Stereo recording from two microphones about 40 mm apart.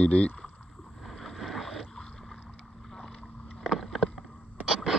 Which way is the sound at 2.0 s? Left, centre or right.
Centre.